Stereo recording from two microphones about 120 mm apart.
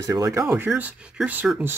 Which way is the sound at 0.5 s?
15° right (ahead or behind).